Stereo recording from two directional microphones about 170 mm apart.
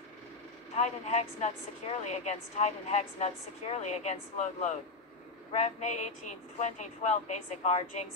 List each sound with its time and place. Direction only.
0.7 s speech: 40° left (ahead or behind)